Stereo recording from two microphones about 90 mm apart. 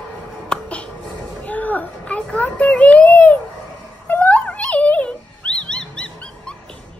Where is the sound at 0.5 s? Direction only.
15° left (ahead or behind).